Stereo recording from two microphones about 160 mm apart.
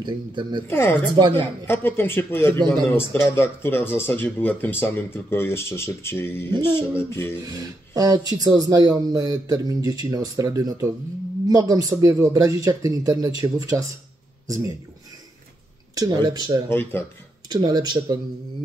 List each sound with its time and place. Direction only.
0.0 s speech: 30° right (ahead or behind)
0.7 s speech: 15° left (ahead or behind)
1.1 s speech: 30° right (ahead or behind)
1.7 s speech: 15° left (ahead or behind)
7.4 s speech: 25° right (ahead or behind)
15.9 s speech: 25° right (ahead or behind)
16.6 s speech: 15° left (ahead or behind)
17.5 s speech: 25° right (ahead or behind)